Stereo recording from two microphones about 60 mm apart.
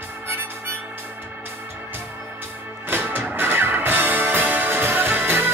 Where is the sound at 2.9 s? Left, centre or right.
Right.